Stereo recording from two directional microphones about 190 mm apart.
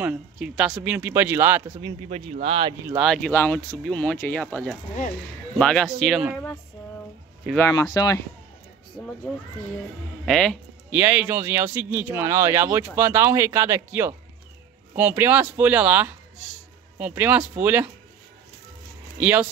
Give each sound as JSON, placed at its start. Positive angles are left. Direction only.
{"t": 0.0, "sound": "speech", "side_deg": -5}
{"t": 1.9, "sound": "speech", "side_deg": -30}
{"t": 2.8, "sound": "speech", "side_deg": -10}
{"t": 3.1, "sound": "speech", "side_deg": 5}
{"t": 7.5, "sound": "speech", "side_deg": 15}
{"t": 10.2, "sound": "music", "side_deg": 5}
{"t": 11.0, "sound": "speech", "side_deg": -10}
{"t": 19.1, "sound": "speech", "side_deg": -10}